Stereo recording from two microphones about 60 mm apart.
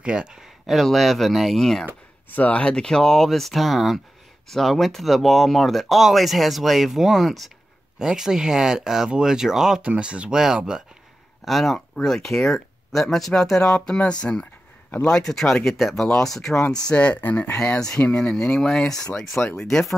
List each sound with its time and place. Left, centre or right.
0.0 s speech: centre
0.7 s speech: centre
2.2 s speech: left; by 9.8 s centre
9.8 s speech: centre
11.4 s speech: centre
16.9 s speech: centre
17.2 s speech: left
17.6 s speech: centre